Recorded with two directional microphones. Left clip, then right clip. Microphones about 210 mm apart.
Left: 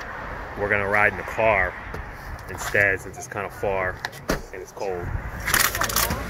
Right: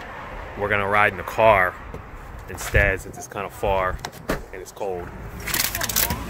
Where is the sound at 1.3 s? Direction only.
25° right (ahead or behind).